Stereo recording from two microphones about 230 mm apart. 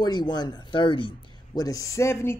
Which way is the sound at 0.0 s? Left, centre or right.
Centre.